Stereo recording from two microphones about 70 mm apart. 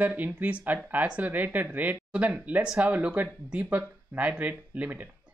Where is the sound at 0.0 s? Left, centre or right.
Right.